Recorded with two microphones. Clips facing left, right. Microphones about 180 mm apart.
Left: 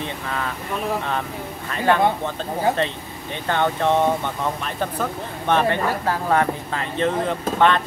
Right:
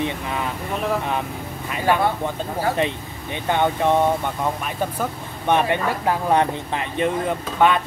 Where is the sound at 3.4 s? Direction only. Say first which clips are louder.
Right 1 dB; 15° right (ahead or behind).